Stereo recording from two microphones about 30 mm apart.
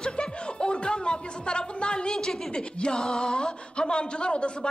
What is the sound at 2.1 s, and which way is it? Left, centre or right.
Speech, centre.